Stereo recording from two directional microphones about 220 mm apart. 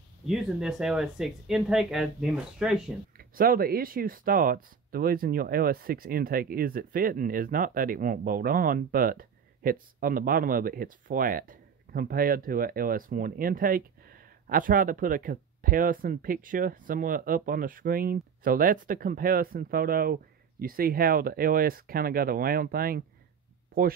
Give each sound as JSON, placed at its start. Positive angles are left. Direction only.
{"t": 0.3, "sound": "speech", "side_deg": 0}
{"t": 3.2, "sound": "speech", "side_deg": -40}